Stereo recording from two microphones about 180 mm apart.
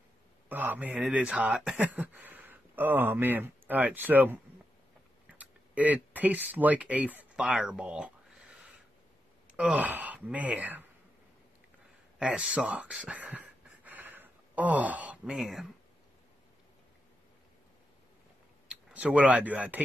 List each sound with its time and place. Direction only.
0.5 s speech: 10° right (ahead or behind)
5.4 s speech: 10° right (ahead or behind)
8.5 s filing: 5° right (ahead or behind)
9.5 s speech: 5° right (ahead or behind)
12.2 s speech: 5° right (ahead or behind)
18.7 s speech: 5° right (ahead or behind)